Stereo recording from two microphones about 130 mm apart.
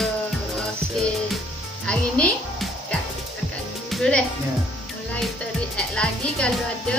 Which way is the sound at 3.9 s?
5° left (ahead or behind).